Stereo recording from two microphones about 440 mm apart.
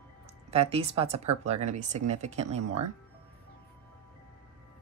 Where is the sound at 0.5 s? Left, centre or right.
Centre.